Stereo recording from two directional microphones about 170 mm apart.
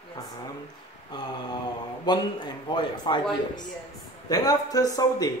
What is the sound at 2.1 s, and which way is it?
Speech, 25° left (ahead or behind).